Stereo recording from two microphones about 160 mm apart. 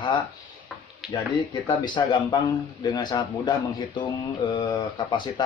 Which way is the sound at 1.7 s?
25° left (ahead or behind).